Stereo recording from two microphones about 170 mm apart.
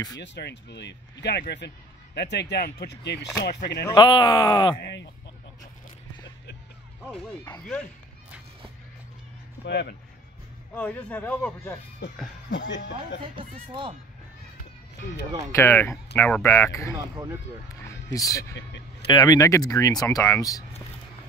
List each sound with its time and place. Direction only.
0.2 s speech: 85° left
3.8 s speech: 30° left (ahead or behind)
4.7 s speech: 90° left
7.6 s speech: 5° left (ahead or behind)
9.7 s speech: 80° left
10.7 s speech: 10° left (ahead or behind)
12.4 s speech: 90° left
13.2 s speech: 30° right (ahead or behind)
15.5 s speech: 15° left (ahead or behind)
17.8 s a sound: 20° left (ahead or behind)
19.1 s speech: 25° left (ahead or behind)